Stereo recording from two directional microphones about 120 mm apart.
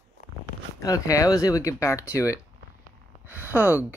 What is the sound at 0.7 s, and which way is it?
Speech, 30° left (ahead or behind).